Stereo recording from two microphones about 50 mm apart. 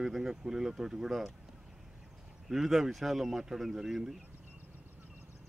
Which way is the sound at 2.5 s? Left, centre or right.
Centre.